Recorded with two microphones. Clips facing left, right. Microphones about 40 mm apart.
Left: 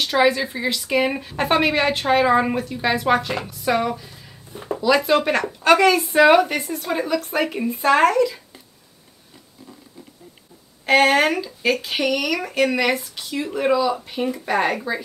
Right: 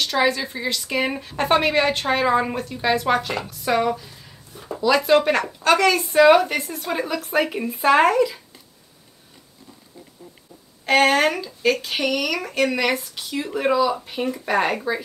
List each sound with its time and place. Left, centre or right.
0.0 s a woman's voice: centre
4.5 s a sound: left
4.7 s a woman's voice: centre
10.9 s a woman's voice: centre